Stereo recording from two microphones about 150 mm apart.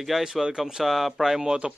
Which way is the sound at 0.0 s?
Centre (ahead or behind).